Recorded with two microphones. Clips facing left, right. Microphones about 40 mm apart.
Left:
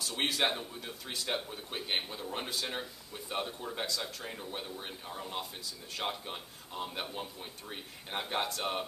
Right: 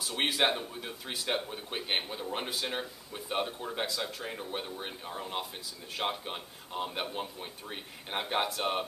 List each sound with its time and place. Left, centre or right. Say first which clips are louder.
0.0 s a man's voice: right 3 dB; centre